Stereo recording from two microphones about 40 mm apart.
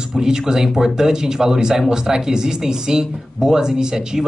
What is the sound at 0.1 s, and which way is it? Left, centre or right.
Speech, centre.